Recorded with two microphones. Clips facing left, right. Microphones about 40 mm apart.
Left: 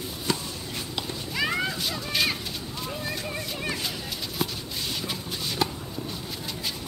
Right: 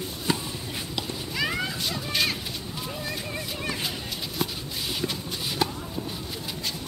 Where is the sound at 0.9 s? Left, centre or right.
Centre.